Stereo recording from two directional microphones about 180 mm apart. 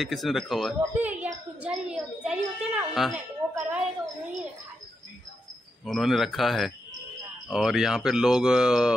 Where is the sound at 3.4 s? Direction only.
15° right (ahead or behind).